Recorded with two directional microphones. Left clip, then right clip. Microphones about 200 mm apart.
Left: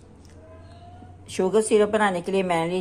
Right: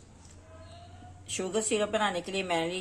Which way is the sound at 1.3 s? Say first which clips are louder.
Left 10 dB; 35° left (ahead or behind).